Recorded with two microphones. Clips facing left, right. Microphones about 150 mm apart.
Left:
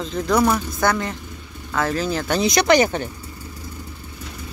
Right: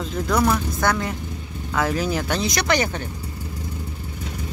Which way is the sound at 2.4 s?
20° left (ahead or behind).